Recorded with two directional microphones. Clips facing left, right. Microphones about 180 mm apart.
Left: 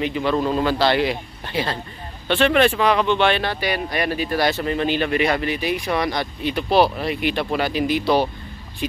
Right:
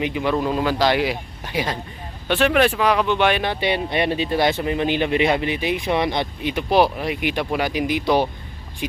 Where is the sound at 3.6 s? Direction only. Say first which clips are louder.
Right 2 dB; 25° right (ahead or behind).